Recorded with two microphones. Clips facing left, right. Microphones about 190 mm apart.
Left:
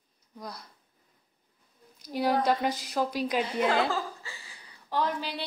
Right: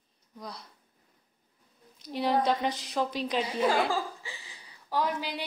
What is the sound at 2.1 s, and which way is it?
A woman's voice, 5° left (ahead or behind).